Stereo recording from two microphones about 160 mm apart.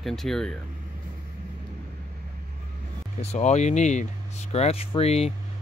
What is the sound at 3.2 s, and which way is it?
Speech, 45° left (ahead or behind).